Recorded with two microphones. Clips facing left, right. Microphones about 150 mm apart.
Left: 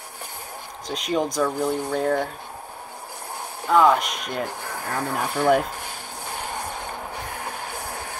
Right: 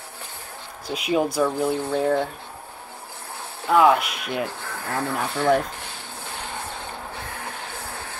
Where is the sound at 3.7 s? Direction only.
5° right (ahead or behind).